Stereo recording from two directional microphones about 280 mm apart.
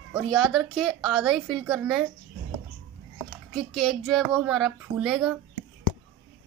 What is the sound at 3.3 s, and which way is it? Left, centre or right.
Speech, centre.